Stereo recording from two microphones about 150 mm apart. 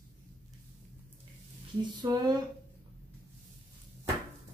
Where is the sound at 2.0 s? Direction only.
25° right (ahead or behind).